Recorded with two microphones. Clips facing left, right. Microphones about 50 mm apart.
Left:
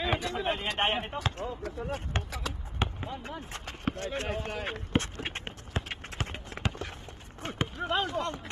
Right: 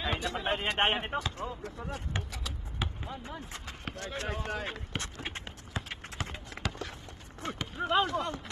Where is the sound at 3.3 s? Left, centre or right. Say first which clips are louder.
Left 2 dB; left.